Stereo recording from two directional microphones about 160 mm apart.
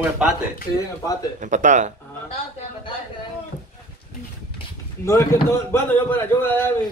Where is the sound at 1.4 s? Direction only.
50° right (ahead or behind).